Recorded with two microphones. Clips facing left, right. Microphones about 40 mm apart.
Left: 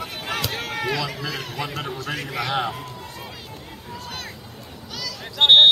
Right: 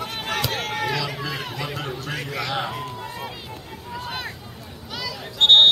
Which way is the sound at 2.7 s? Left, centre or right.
Centre.